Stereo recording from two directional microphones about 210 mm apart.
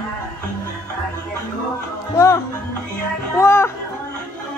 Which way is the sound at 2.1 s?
15° left (ahead or behind).